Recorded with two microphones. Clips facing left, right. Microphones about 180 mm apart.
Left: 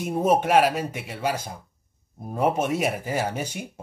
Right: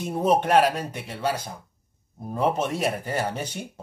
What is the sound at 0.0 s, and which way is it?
A man's voice, 10° left (ahead or behind).